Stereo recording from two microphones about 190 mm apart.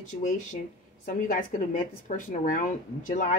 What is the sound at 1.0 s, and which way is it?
A woman's voice, 45° left (ahead or behind).